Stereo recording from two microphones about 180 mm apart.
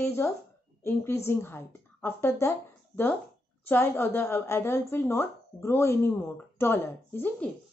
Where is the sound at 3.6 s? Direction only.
10° left (ahead or behind).